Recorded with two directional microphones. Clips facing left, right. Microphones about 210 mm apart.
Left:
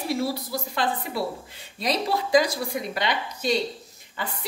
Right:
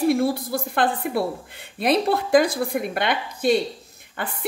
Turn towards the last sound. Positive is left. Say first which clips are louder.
# right 2 dB
turn(degrees=-55)  # may be behind; listen again after turning